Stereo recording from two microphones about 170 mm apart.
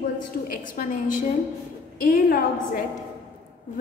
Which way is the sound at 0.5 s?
55° left (ahead or behind).